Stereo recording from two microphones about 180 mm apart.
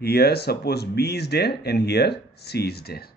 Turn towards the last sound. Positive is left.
turn(degrees=60)  # may be behind; listen again after turning